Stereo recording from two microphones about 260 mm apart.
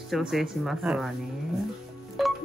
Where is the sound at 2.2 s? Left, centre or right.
Centre.